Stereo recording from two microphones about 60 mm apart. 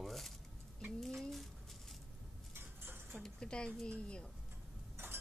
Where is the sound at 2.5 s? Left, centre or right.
Right.